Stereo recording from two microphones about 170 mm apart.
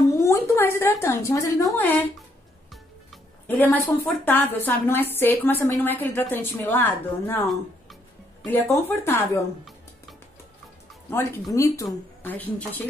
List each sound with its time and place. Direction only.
0.2 s a sound: 15° left (ahead or behind)
1.7 s a woman's voice: 10° left (ahead or behind)
3.4 s a woman's voice: 10° left (ahead or behind)
7.4 s music: centre (ahead or behind)
8.5 s a woman's voice: 15° left (ahead or behind)
11.1 s a woman's voice: 15° left (ahead or behind)